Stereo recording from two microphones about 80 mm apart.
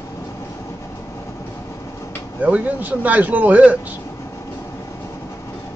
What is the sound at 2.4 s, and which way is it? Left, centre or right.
Speech, right.